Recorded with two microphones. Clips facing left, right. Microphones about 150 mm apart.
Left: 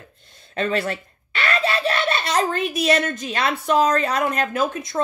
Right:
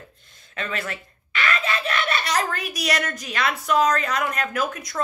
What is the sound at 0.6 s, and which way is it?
A child's voice, 30° left (ahead or behind).